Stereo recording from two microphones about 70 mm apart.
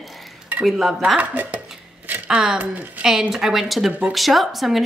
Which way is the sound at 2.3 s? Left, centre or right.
Centre.